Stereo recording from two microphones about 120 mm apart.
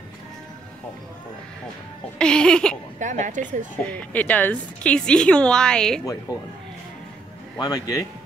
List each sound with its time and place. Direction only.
2.1 s a woman's voice: 5° left (ahead or behind)
3.0 s a woman's voice: 90° right
3.8 s a woman's voice: 10° left (ahead or behind)
7.5 s speech: 30° left (ahead or behind)